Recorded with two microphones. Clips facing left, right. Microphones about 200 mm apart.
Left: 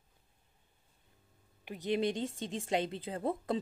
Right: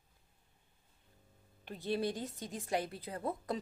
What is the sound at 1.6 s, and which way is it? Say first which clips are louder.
A woman's voice: left 3 dB; 15° left (ahead or behind).